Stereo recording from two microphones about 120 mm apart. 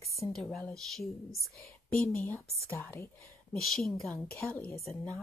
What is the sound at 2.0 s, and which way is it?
Speech, 15° left (ahead or behind).